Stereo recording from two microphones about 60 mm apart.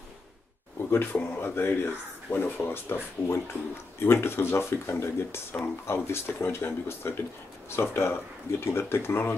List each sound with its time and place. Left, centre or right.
0.8 s speech: left